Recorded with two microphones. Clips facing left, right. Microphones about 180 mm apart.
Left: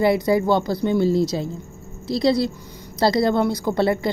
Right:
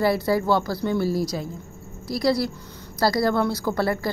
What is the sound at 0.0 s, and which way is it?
A woman's voice, 20° left (ahead or behind).